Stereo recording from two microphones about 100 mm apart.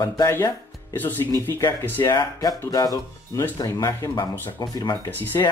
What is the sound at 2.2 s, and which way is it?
Speech, 40° left (ahead or behind).